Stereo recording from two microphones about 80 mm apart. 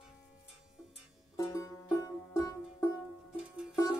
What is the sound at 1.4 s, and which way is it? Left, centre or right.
Music, left.